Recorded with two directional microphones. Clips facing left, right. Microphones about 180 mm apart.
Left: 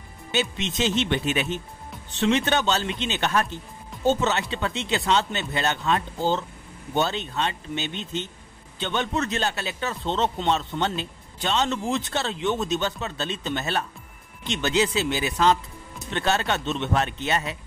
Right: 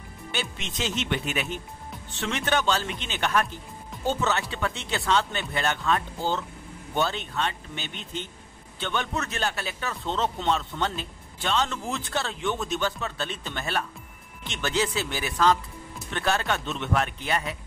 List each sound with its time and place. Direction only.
0.3 s a man's voice: 20° left (ahead or behind)